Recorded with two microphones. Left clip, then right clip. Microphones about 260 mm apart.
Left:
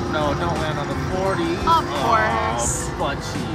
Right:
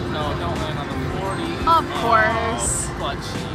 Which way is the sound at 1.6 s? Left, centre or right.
Centre.